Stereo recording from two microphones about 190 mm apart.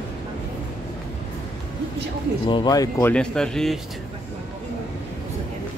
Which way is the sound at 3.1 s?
5° left (ahead or behind).